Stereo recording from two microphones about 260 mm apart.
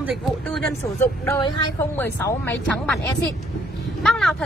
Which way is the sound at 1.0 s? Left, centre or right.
Centre.